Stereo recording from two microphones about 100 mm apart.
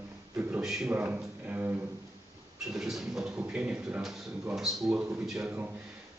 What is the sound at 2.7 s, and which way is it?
A man's voice, 5° right (ahead or behind).